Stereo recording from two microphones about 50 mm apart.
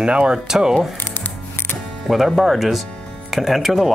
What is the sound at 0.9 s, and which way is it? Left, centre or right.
Scissors, left.